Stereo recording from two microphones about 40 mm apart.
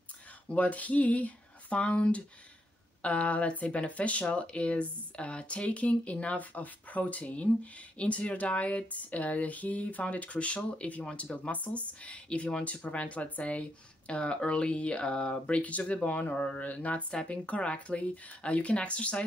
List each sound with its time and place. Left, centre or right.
0.5 s speech: left